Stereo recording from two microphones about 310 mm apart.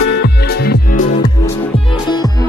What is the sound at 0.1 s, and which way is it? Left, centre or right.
Music, left.